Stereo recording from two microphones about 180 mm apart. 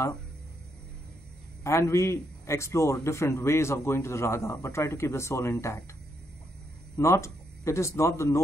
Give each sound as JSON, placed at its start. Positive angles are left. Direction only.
{"t": 1.6, "sound": "a man's voice", "side_deg": 15}
{"t": 7.0, "sound": "speech", "side_deg": 15}